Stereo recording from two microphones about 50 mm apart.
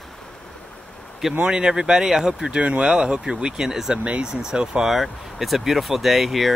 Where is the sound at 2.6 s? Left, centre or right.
Right.